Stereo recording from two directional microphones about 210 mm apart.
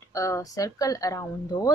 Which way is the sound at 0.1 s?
15° left (ahead or behind).